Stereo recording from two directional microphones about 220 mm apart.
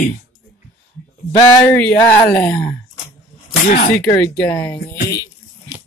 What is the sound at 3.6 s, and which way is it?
Speech, 45° left (ahead or behind).